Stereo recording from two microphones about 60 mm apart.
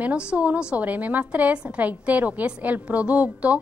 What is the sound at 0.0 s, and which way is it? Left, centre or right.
A woman's voice, centre.